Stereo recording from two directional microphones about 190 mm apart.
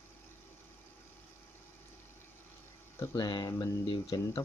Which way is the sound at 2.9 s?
20° left (ahead or behind).